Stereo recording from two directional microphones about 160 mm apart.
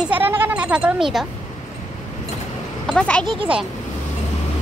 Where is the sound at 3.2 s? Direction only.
30° right (ahead or behind).